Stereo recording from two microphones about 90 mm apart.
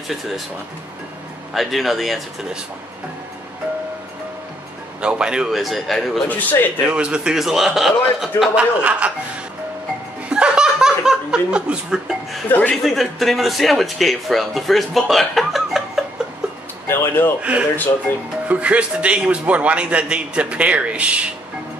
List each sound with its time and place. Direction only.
1.5 s a man's voice: centre (ahead or behind)
5.0 s a man's voice: 10° right (ahead or behind)
6.2 s speech: 20° left (ahead or behind)
6.9 s a man's voice: 10° right (ahead or behind)
8.5 s a man's voice: 15° right (ahead or behind)
10.3 s laughter: 10° right (ahead or behind)
12.4 s speech: 20° left (ahead or behind)
12.8 s a man's voice: centre (ahead or behind)
16.8 s speech: 25° left (ahead or behind)
17.4 s a man's voice: 15° right (ahead or behind)